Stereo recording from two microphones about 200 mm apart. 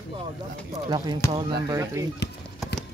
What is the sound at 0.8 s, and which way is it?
Speech, 20° right (ahead or behind).